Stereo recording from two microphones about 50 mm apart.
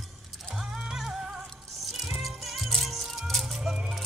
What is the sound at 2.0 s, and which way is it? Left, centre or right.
Music, centre.